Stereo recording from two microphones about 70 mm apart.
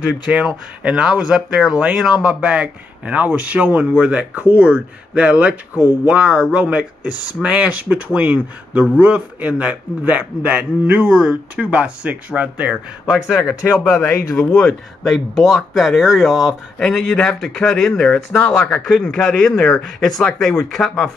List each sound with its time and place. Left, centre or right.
0.3 s speech: centre
13.8 s speech: left
14.5 s speech: centre